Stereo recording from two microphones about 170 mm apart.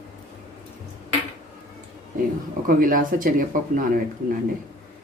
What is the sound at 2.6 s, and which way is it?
Speech, 55° right (ahead or behind).